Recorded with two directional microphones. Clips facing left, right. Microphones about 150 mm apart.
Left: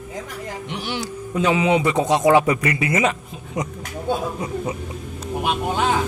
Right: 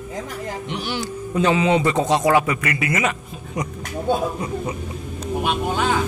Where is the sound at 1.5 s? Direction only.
10° left (ahead or behind); by 3.1 s 25° left (ahead or behind).